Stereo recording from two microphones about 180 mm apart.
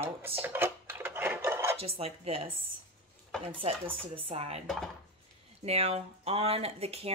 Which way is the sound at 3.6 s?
30° right (ahead or behind).